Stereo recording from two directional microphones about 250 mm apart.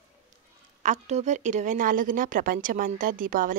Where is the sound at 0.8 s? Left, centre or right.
Right.